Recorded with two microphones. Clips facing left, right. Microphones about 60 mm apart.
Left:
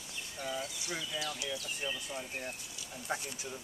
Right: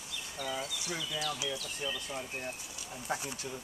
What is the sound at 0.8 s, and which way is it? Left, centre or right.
Speech, left.